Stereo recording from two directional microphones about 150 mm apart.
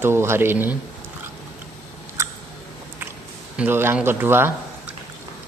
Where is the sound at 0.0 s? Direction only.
15° right (ahead or behind).